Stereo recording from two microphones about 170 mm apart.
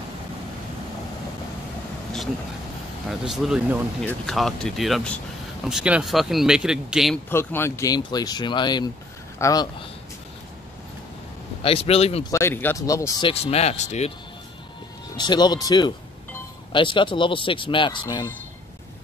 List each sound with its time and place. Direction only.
3.1 s speech: centre (ahead or behind)
7.2 s speech: 15° left (ahead or behind)
11.6 s speech: 35° left (ahead or behind)
12.3 s speech: 15° left (ahead or behind)
13.3 s speech: 35° left (ahead or behind)
15.1 s speech: 25° left (ahead or behind)